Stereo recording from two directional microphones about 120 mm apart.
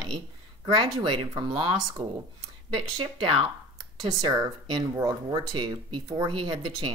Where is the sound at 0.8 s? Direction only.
40° right (ahead or behind).